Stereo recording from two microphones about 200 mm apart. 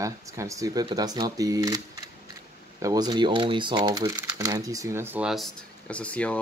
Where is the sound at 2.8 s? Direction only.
20° right (ahead or behind); by 6.4 s 5° left (ahead or behind).